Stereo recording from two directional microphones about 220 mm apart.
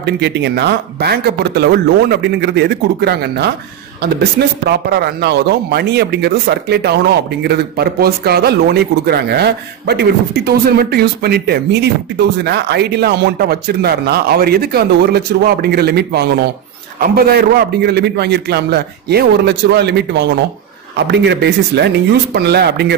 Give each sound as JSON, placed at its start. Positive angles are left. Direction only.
{"t": 0.0, "sound": "speech", "side_deg": -50}
{"t": 4.6, "sound": "speech", "side_deg": -50}